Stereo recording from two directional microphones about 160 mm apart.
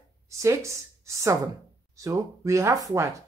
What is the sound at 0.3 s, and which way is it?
A woman's voice, 20° right (ahead or behind).